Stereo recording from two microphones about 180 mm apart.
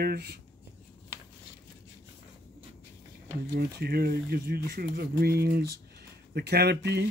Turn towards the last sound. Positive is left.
turn(degrees=-70)  # may be behind; listen again after turning